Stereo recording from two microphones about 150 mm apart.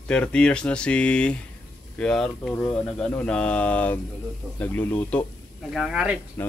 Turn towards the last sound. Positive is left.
turn(degrees=15)  # may be behind; listen again after turning